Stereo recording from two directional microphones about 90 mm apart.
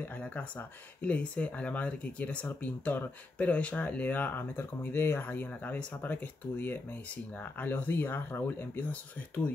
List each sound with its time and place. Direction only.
0.0 s speech: 20° left (ahead or behind)